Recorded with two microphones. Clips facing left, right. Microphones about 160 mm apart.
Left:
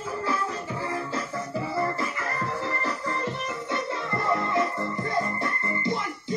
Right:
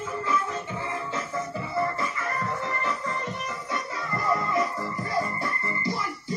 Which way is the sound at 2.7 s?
35° left (ahead or behind).